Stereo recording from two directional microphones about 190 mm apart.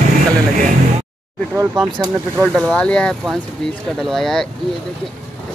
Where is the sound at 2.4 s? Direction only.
5° left (ahead or behind).